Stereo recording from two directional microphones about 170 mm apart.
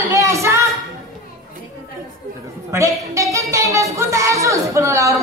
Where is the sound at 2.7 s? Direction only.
15° right (ahead or behind).